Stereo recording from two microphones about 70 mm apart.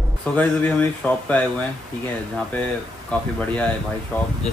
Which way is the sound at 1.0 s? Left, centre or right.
Left.